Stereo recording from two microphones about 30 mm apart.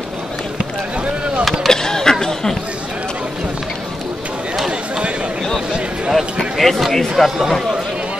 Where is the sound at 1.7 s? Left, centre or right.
Left.